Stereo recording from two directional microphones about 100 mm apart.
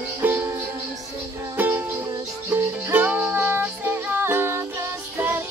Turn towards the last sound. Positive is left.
turn(degrees=-20)  # may be behind; listen again after turning